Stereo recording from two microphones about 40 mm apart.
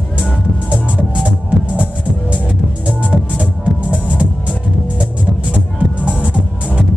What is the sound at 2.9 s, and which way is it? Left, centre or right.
Music, right.